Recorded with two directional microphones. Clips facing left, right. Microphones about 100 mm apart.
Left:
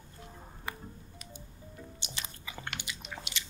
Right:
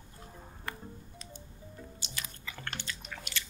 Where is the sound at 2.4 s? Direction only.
15° left (ahead or behind).